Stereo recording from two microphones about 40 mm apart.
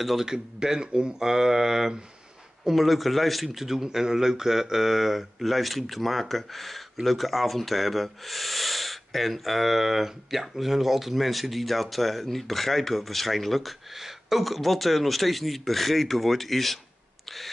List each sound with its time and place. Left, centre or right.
0.0 s speech: centre